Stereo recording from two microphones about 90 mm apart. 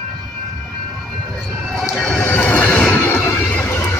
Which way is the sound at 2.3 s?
20° left (ahead or behind).